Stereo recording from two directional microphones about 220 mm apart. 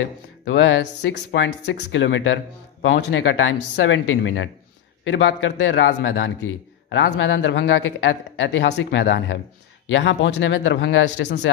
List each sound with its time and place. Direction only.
0.5 s a man's voice: 55° left (ahead or behind)